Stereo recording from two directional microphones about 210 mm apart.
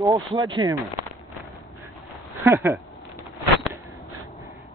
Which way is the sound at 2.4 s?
10° right (ahead or behind).